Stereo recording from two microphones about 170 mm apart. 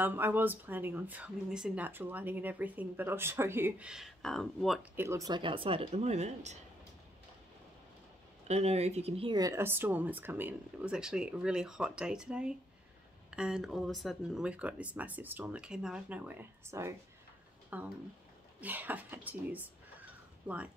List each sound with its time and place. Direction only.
0.0 s speech: 10° right (ahead or behind)
4.9 s speech: 15° right (ahead or behind); by 6.6 s 40° right (ahead or behind)
8.5 s speech: 40° right (ahead or behind)
9.4 s speech: 15° right (ahead or behind)